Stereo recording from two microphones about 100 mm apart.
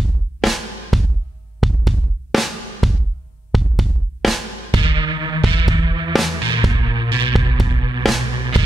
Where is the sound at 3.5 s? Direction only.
Centre (ahead or behind).